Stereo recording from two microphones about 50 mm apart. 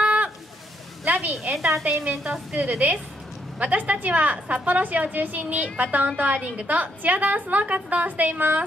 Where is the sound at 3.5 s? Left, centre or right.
Right.